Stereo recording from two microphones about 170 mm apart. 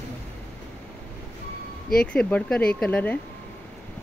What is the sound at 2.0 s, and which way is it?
Speech, 5° left (ahead or behind).